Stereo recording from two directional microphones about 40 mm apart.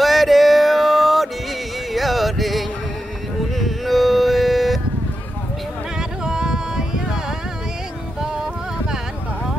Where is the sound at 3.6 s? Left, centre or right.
Centre.